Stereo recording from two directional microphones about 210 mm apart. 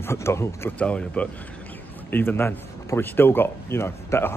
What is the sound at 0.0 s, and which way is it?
Speech, 15° left (ahead or behind).